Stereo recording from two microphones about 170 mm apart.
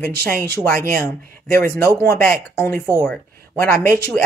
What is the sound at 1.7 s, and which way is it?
A woman's voice, 15° left (ahead or behind).